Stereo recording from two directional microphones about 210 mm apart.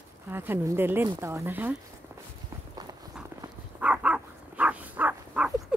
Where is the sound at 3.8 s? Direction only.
5° right (ahead or behind).